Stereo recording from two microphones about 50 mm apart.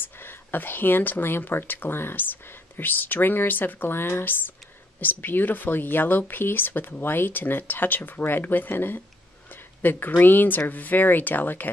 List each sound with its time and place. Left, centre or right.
0.2 s speech: left